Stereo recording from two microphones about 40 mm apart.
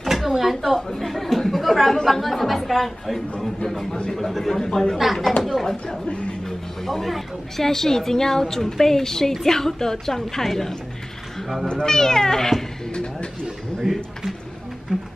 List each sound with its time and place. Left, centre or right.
0.0 s a sound: centre
0.4 s chatter: centre
2.0 s a woman's voice: centre
4.9 s speech: centre
6.0 s speech: left
6.4 s a woman's voice: centre
11.7 s a woman's voice: centre
12.9 s speech: left
13.9 s speech: centre